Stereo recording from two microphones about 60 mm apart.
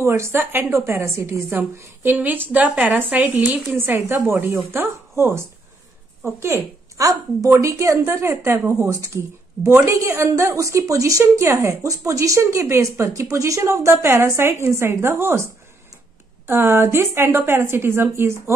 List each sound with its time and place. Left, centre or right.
0.0 s a woman's voice: right
2.0 s speech: right
3.8 s a woman's voice: right
7.0 s speech: right
8.1 s a woman's voice: right
16.4 s a woman's voice: right